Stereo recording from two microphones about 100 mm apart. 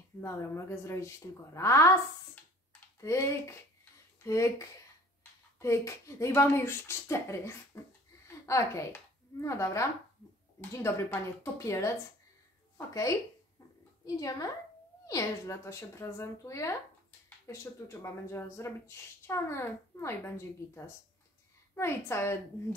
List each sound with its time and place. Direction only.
0.2 s speech: 30° left (ahead or behind)
3.0 s a woman's voice: 30° left (ahead or behind)